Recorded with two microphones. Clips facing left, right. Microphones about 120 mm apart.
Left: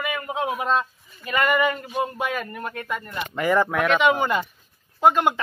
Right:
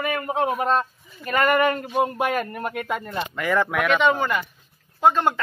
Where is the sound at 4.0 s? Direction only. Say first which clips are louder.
Left 1 dB; 10° left (ahead or behind).